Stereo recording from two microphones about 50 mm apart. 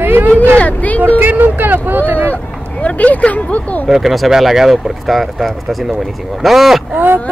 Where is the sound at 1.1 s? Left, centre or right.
Right.